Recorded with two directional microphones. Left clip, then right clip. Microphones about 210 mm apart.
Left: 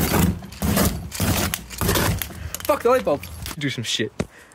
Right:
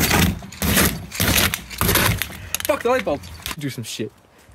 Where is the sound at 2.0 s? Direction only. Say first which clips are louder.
Right 4 dB; 5° left (ahead or behind).